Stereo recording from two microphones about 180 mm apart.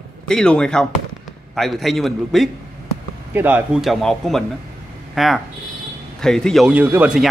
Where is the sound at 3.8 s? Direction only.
Centre (ahead or behind).